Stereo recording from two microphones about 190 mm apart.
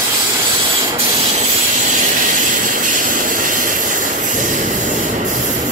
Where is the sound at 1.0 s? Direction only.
35° right (ahead or behind).